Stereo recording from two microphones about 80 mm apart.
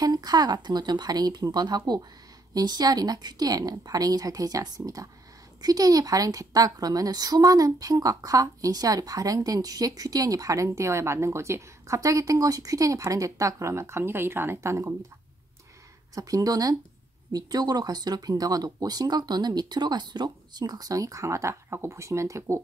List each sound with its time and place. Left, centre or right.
0.0 s a woman's voice: right
16.2 s a woman's voice: right